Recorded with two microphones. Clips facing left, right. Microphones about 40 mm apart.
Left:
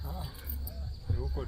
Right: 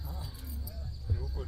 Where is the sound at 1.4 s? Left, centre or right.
Centre.